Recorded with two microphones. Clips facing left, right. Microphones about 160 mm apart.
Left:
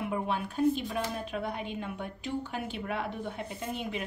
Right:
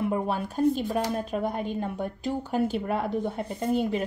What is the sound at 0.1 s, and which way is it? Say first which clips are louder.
A woman's voice: right 4 dB; 40° right (ahead or behind).